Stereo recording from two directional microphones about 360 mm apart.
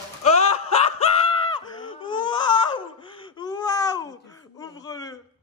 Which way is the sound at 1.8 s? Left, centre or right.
Centre.